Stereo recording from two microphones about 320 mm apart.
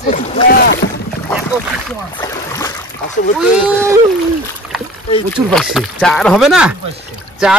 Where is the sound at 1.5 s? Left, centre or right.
Centre.